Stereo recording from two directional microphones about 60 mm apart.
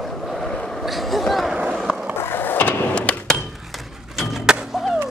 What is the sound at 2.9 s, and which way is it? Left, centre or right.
Hammer, left.